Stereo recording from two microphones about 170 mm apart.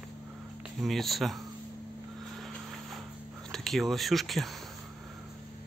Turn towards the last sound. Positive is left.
turn(degrees=0)  # may be behind; listen again after turning